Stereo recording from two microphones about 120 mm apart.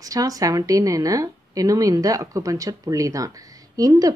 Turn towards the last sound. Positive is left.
turn(degrees=-30)  # may be behind; listen again after turning